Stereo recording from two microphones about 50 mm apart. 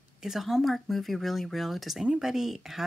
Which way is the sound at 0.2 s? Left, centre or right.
Centre.